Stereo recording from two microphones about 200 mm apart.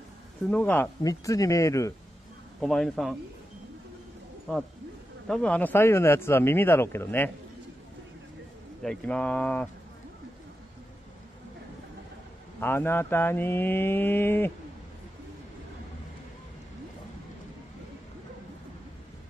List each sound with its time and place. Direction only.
0.5 s speech: 10° left (ahead or behind)
2.6 s speech: centre (ahead or behind)
5.3 s speech: 5° left (ahead or behind)
8.8 s speech: 5° left (ahead or behind)
12.5 s speech: 10° left (ahead or behind)